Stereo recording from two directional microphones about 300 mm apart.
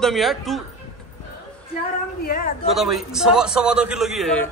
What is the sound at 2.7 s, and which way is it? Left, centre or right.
A man's voice, centre.